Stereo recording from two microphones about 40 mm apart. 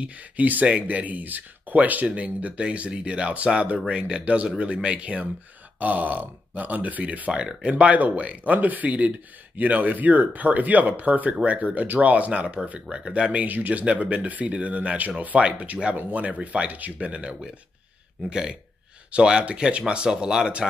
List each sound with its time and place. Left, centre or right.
0.0 s speech: right
2.0 s speech: right
5.8 s speech: right
7.3 s speech: right
7.7 s speech: right
13.3 s speech: right
16.7 s speech: right
17.1 s speech: right